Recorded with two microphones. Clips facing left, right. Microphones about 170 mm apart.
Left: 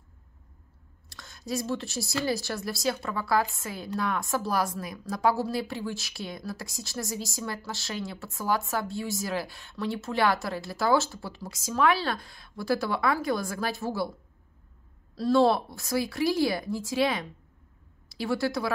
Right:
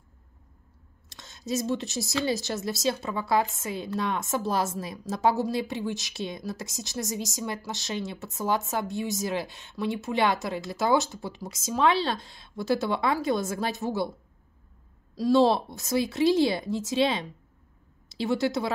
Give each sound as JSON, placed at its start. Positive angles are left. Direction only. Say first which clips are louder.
{"t": 1.0, "sound": "a woman's voice", "louder": "right 2 dB", "side_deg": -20}
{"t": 15.1, "sound": "a woman's voice", "louder": "right 1 dB", "side_deg": -15}